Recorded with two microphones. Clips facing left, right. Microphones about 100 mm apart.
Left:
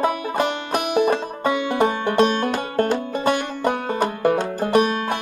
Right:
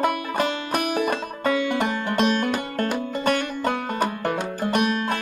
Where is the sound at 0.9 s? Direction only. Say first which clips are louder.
Left 5 dB; 25° left (ahead or behind).